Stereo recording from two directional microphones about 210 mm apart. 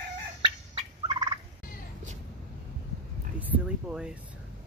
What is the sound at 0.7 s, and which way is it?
Fowl, 20° right (ahead or behind).